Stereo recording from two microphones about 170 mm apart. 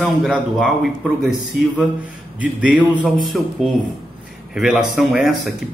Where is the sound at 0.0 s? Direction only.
5° right (ahead or behind).